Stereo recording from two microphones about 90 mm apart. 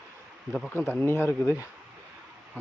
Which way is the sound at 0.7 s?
25° left (ahead or behind).